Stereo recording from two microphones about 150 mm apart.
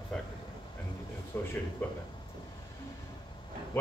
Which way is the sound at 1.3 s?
15° left (ahead or behind).